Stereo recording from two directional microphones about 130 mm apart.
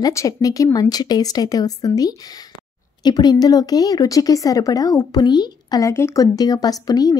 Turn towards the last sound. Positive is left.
turn(degrees=30)  # may be behind; listen again after turning